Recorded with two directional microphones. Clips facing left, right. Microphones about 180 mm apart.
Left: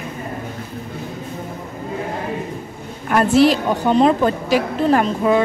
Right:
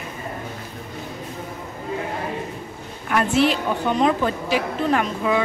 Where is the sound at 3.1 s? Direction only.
40° left (ahead or behind).